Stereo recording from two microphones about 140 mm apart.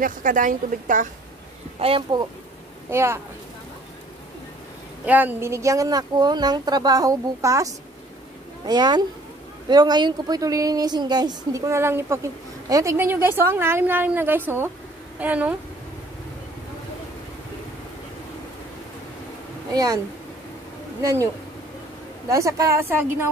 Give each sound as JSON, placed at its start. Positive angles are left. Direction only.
{"t": 0.0, "sound": "a woman's voice", "side_deg": -70}
{"t": 1.8, "sound": "speech", "side_deg": -40}
{"t": 2.9, "sound": "a woman's voice", "side_deg": -20}
{"t": 5.0, "sound": "a woman's voice", "side_deg": -10}
{"t": 19.7, "sound": "speech", "side_deg": -25}
{"t": 21.0, "sound": "a woman's voice", "side_deg": -20}
{"t": 22.3, "sound": "a woman's voice", "side_deg": -20}